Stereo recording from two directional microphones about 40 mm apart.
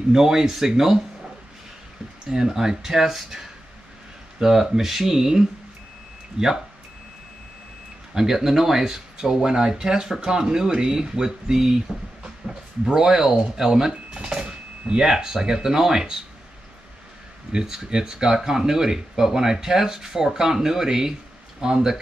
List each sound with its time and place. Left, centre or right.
0.1 s speech: centre
2.2 s speech: centre
8.1 s speech: centre
17.5 s speech: centre